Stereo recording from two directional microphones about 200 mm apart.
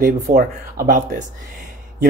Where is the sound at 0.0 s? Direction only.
45° right (ahead or behind).